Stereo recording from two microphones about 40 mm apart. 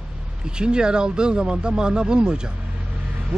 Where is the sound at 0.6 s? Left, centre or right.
Right.